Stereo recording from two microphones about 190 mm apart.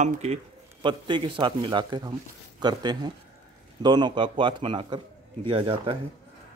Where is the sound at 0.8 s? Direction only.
25° right (ahead or behind).